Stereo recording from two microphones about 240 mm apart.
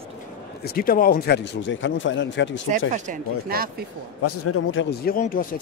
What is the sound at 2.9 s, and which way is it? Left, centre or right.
Speech, right.